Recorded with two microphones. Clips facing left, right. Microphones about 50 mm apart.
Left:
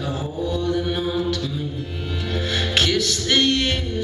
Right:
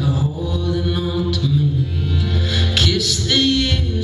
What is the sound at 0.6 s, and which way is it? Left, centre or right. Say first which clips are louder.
Mantra: right 2 dB; centre.